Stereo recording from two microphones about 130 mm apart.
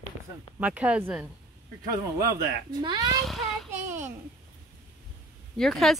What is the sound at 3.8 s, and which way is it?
Speech, 65° right (ahead or behind).